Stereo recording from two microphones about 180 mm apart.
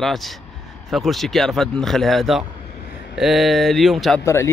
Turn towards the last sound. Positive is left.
turn(degrees=15)  # may be behind; listen again after turning